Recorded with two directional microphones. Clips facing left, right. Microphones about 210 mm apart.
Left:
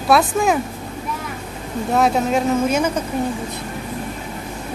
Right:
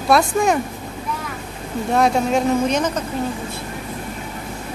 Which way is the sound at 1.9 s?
Centre (ahead or behind).